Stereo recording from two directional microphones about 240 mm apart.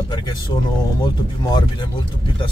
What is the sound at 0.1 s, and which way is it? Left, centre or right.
Speech, centre.